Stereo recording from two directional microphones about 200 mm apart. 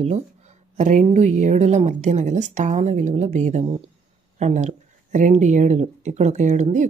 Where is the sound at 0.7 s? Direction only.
35° right (ahead or behind).